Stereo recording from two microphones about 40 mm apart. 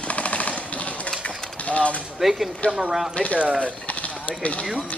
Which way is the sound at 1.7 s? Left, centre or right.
Left.